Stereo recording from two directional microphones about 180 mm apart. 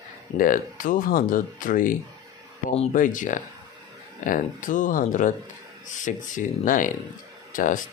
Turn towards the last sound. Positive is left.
turn(degrees=45)  # may be behind; listen again after turning